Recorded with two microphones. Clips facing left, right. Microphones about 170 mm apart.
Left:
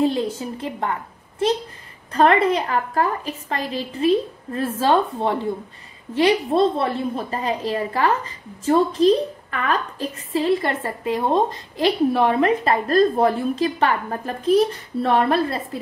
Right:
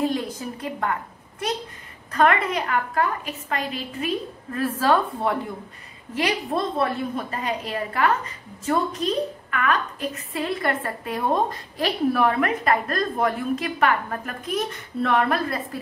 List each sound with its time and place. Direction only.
0.0 s a woman's voice: 25° left (ahead or behind)
2.1 s a woman's voice: 30° left (ahead or behind)